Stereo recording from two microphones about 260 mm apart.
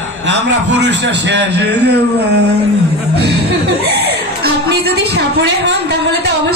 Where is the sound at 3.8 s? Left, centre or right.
Right.